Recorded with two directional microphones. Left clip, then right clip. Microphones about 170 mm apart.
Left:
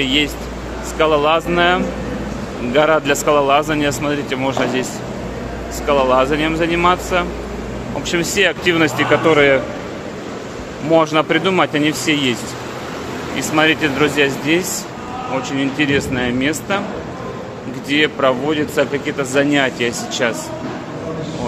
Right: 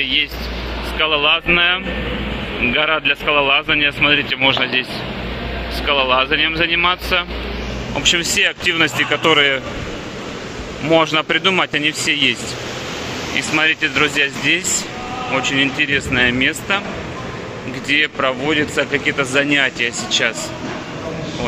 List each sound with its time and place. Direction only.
0.0 s speech: 15° left (ahead or behind)
2.7 s speech: 15° left (ahead or behind)
5.9 s speech: 10° left (ahead or behind)
10.9 s speech: 10° left (ahead or behind)
13.6 s speech: 10° left (ahead or behind)
17.9 s speech: 15° left (ahead or behind)